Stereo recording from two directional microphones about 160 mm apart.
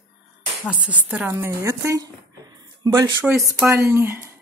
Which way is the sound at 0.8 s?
10° right (ahead or behind).